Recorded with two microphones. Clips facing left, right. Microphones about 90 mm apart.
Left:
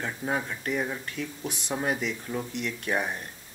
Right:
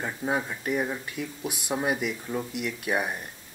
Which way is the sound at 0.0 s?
10° right (ahead or behind).